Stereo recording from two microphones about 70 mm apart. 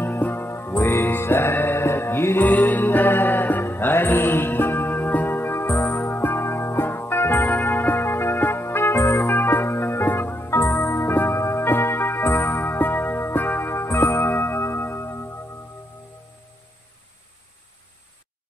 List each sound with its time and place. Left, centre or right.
0.0 s music: left
2.4 s music: left
14.2 s music: left